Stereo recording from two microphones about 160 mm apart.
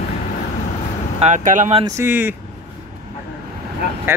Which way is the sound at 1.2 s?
50° right (ahead or behind).